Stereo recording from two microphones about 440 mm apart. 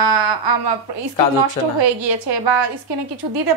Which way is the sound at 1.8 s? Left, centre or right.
Right.